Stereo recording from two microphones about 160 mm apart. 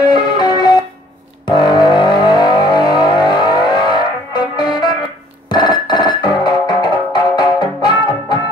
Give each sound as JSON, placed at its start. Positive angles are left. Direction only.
{"t": 0.0, "sound": "music", "side_deg": 25}
{"t": 1.4, "sound": "vehicle", "side_deg": 25}
{"t": 5.5, "sound": "music", "side_deg": 25}